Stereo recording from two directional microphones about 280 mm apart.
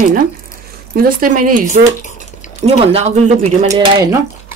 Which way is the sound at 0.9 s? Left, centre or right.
Right.